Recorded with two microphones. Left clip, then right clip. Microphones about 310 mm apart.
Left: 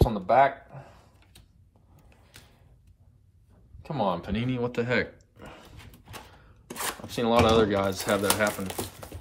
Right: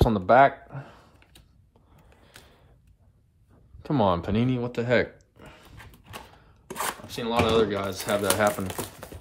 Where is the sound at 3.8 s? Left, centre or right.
Right.